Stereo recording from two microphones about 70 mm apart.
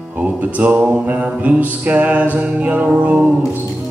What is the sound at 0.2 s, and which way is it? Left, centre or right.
Music, right.